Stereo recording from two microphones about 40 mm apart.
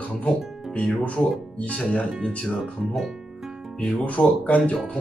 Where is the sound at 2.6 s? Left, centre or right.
Centre.